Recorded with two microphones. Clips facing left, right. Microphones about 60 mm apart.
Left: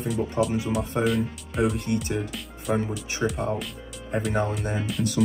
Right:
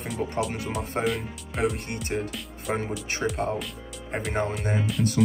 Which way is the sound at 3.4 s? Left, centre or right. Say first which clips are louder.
Right 2 dB; right.